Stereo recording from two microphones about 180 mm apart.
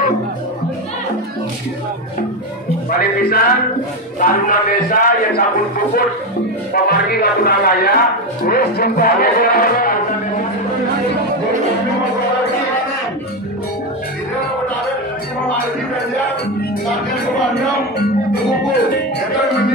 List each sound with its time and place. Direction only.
2.9 s a man's voice: 55° left (ahead or behind)